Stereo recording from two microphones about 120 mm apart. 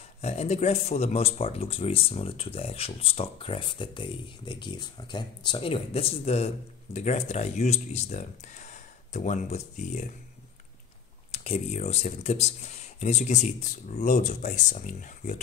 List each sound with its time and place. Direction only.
0.2 s speech: 60° left (ahead or behind); by 10.0 s 90° left
11.3 s speech: 60° left (ahead or behind); by 15.4 s 90° left